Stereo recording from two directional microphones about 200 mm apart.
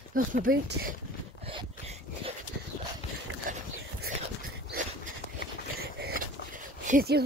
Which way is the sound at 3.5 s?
40° right (ahead or behind).